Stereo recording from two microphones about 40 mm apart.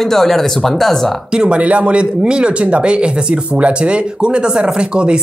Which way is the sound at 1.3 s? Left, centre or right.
Right.